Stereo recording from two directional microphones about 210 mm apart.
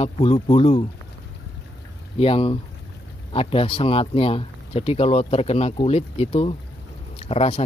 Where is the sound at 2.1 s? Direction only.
25° left (ahead or behind).